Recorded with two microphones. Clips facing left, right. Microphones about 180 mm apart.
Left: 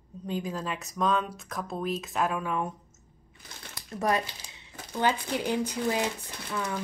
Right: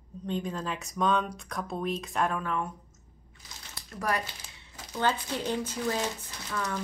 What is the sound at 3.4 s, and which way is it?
Speech, 55° left (ahead or behind).